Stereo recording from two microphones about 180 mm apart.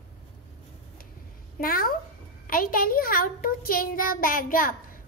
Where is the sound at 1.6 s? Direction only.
55° left (ahead or behind).